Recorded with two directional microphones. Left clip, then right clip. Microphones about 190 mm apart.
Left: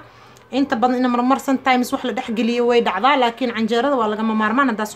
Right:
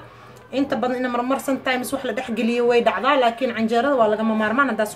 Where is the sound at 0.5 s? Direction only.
50° left (ahead or behind).